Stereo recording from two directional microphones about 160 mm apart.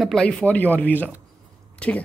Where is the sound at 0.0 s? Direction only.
5° left (ahead or behind).